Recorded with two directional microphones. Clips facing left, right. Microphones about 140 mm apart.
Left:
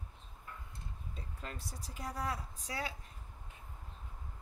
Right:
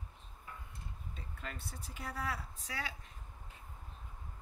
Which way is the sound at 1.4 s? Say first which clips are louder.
Even; 35° left (ahead or behind).